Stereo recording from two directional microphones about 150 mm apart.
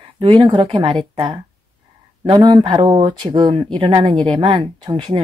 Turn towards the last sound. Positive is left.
turn(degrees=-30)  # may be behind; listen again after turning